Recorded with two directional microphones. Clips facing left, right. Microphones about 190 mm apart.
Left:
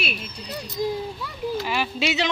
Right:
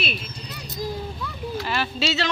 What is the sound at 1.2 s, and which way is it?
Speech, 10° left (ahead or behind).